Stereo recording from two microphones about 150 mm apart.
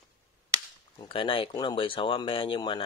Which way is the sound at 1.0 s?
35° left (ahead or behind).